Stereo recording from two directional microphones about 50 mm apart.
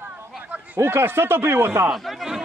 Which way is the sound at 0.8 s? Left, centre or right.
Right.